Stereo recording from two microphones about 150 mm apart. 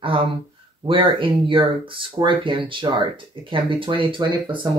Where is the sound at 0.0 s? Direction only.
35° right (ahead or behind).